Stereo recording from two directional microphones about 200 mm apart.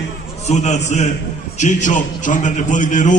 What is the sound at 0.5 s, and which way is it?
A man's voice, 35° left (ahead or behind).